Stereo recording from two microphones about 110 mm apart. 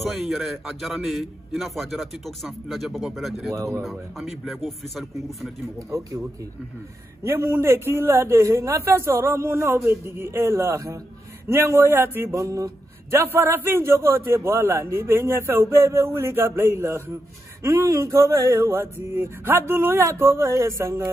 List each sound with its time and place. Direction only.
0.1 s a man's voice: centre (ahead or behind)
3.5 s speech: 30° right (ahead or behind)
3.8 s a man's voice: centre (ahead or behind)
5.9 s speech: 25° right (ahead or behind)
7.2 s speech: 20° right (ahead or behind)